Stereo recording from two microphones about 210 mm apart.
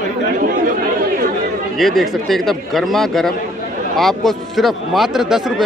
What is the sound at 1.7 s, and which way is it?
Speech, centre (ahead or behind).